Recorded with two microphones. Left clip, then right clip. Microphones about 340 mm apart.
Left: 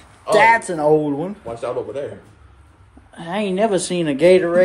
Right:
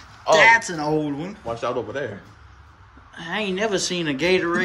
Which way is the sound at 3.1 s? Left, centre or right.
Centre.